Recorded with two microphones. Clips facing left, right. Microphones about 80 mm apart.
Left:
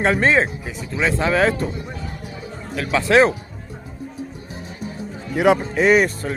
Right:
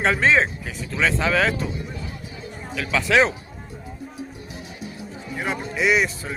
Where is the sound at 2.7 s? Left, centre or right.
Left.